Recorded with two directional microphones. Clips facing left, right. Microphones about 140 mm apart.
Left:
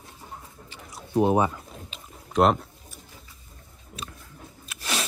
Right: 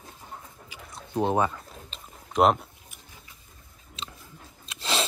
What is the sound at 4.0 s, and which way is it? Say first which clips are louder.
Biting: left 1 dB; 25° right (ahead or behind).